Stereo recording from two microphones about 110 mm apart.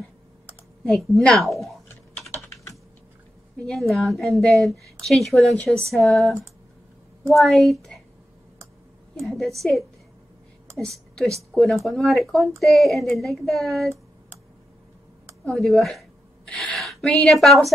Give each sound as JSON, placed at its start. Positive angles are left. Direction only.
{"t": 0.8, "sound": "speech", "side_deg": 0}
{"t": 2.3, "sound": "typing", "side_deg": 25}
{"t": 3.5, "sound": "speech", "side_deg": 5}
{"t": 9.2, "sound": "a woman's voice", "side_deg": 0}
{"t": 15.5, "sound": "a sound", "side_deg": 0}